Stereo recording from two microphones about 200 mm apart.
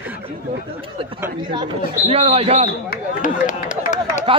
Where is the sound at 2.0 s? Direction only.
30° right (ahead or behind).